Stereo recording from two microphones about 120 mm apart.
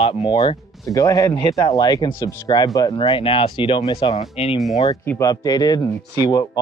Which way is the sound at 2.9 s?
50° left (ahead or behind).